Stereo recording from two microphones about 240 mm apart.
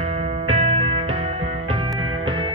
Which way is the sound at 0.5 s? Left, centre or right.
Right.